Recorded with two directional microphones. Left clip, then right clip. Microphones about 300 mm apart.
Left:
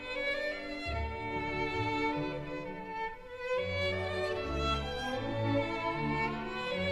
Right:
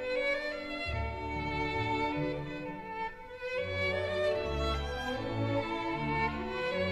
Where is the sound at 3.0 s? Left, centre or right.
Right.